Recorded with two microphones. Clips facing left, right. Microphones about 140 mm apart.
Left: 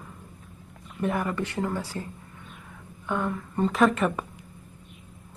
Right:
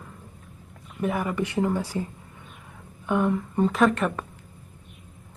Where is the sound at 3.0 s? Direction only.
15° right (ahead or behind).